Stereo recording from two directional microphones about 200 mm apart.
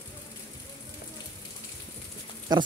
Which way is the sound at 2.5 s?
20° right (ahead or behind).